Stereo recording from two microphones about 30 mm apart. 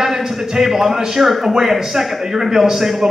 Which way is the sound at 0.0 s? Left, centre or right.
Centre.